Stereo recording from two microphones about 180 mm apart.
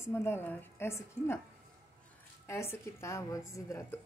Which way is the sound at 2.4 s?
15° left (ahead or behind).